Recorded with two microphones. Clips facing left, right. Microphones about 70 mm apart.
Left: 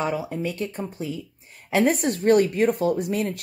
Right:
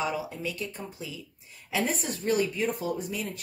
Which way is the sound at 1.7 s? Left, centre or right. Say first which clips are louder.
Left 9 dB; left.